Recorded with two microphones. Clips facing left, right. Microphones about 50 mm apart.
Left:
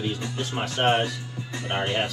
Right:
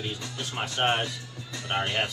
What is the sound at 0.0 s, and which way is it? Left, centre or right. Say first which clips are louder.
Speech: left 5 dB; left.